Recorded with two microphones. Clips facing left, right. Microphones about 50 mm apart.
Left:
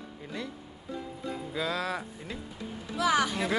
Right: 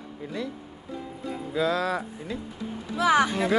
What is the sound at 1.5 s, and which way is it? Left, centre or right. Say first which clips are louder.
Speech: right 7 dB; centre.